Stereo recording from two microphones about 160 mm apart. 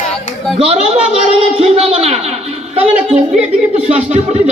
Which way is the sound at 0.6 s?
40° right (ahead or behind).